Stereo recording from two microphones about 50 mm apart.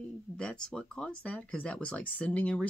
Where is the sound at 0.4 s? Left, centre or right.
Centre.